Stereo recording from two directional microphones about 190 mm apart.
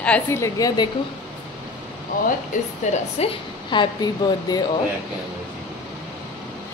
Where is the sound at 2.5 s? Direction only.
40° left (ahead or behind).